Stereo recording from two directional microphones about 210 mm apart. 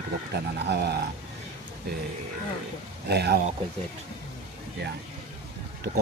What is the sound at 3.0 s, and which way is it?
Speech, 50° right (ahead or behind).